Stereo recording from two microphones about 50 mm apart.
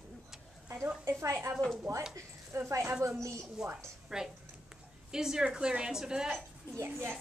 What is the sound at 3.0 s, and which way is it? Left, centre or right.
Speech, right.